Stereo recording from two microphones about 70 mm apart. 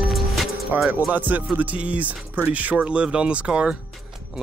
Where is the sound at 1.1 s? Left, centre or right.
Right.